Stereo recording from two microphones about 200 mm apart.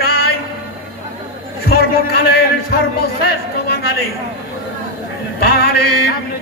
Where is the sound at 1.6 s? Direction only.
50° left (ahead or behind).